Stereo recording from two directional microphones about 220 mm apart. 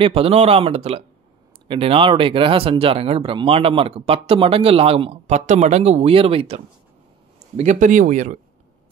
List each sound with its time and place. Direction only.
0.0 s speech: 25° right (ahead or behind)